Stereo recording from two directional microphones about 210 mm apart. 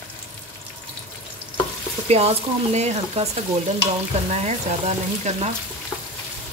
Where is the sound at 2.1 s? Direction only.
30° right (ahead or behind).